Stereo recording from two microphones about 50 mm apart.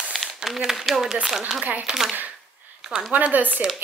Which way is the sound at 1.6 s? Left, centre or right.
Right.